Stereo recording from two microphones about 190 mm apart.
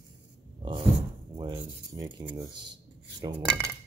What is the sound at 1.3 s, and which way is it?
Speech, 20° right (ahead or behind).